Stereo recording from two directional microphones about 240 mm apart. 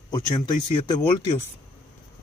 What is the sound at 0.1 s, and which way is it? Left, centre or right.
Speech, centre.